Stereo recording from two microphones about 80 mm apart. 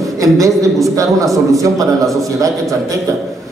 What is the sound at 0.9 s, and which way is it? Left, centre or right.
Speech, right.